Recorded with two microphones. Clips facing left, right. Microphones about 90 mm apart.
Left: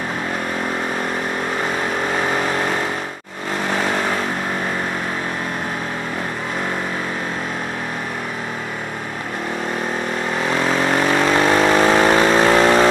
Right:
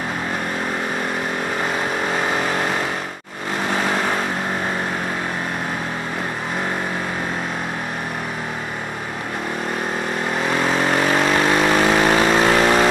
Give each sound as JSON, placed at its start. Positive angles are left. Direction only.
{"t": 10.5, "sound": "vehicle", "side_deg": 35}